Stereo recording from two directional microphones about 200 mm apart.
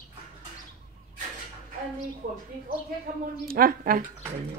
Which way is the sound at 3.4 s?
45° right (ahead or behind).